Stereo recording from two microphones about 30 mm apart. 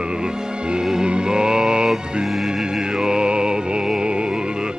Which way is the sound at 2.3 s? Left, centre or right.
Centre.